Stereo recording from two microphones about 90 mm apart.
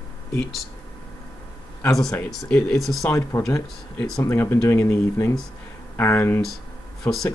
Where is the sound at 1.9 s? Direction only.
5° left (ahead or behind).